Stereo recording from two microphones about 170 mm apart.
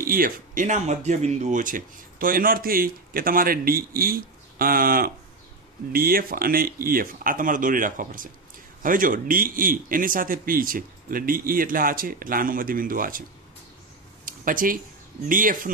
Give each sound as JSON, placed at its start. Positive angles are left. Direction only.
{"t": 0.0, "sound": "speech", "side_deg": -55}
{"t": 14.2, "sound": "a sound", "side_deg": -55}
{"t": 15.2, "sound": "speech", "side_deg": -55}